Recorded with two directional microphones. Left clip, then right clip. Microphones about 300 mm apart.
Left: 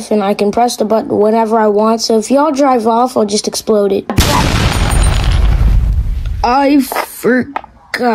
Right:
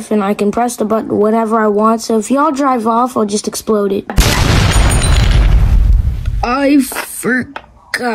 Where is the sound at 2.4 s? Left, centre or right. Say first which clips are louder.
Even; centre.